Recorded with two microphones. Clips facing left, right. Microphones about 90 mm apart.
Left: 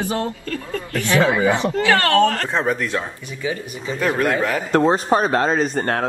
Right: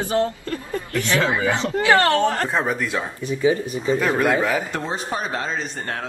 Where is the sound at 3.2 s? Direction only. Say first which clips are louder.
Right 7 dB; 30° right (ahead or behind).